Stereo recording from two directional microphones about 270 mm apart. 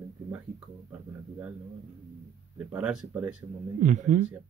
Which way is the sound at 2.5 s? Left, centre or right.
Centre.